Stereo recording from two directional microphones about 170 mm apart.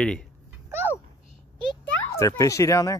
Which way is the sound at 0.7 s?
15° right (ahead or behind).